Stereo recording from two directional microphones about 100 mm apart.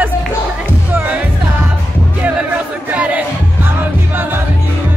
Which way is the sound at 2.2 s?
15° right (ahead or behind).